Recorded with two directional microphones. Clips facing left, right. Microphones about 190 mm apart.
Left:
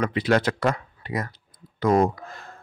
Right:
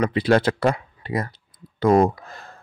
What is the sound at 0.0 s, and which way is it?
Speech, 30° right (ahead or behind).